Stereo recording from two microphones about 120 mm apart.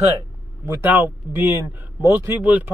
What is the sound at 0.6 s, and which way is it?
Speech, 15° right (ahead or behind).